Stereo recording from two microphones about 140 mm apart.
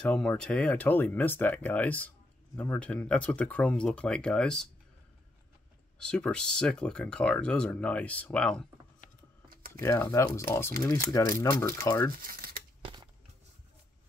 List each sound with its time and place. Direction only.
0.0 s speech: 5° left (ahead or behind)
5.9 s speech: 5° left (ahead or behind)
9.8 s speech: 20° left (ahead or behind)
12.2 s tearing: 90° right
12.8 s a sound: 35° right (ahead or behind)